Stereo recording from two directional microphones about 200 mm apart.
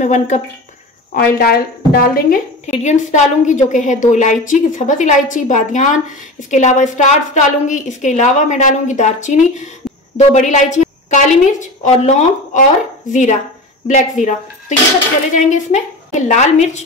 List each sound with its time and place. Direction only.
0.0 s a woman's voice: 35° left (ahead or behind)
1.1 s a woman's voice: 50° left (ahead or behind)
15.3 s a woman's voice: 35° left (ahead or behind)